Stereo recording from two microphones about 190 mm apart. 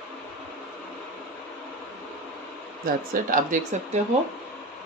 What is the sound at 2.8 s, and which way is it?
Speech, 45° right (ahead or behind).